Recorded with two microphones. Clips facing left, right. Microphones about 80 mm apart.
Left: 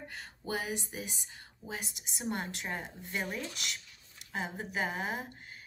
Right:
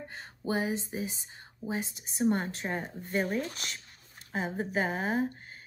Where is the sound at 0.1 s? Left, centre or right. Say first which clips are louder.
Right 5 dB; right.